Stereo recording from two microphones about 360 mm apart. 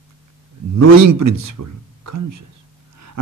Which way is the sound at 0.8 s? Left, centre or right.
Right.